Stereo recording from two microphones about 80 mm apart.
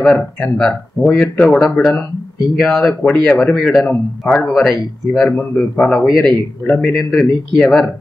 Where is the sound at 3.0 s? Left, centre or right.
Centre.